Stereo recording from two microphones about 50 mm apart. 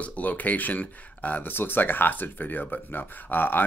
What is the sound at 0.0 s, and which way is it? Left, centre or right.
Speech, left.